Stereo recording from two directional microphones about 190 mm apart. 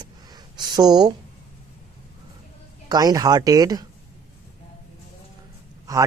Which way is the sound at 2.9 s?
20° right (ahead or behind).